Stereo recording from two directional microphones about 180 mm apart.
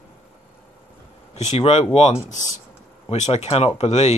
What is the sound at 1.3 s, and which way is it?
Speech, 35° left (ahead or behind).